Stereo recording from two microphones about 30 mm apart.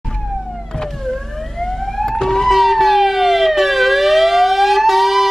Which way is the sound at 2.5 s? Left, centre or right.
Centre.